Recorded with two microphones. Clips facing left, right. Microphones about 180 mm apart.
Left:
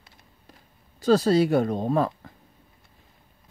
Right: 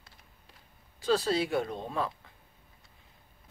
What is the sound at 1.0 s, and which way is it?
Speech, 40° left (ahead or behind).